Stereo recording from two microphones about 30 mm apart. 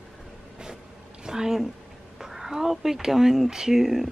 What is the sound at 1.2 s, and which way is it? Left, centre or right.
A woman's voice, centre.